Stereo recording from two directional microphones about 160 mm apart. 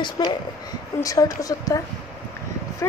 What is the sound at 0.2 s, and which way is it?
Speech, 25° left (ahead or behind).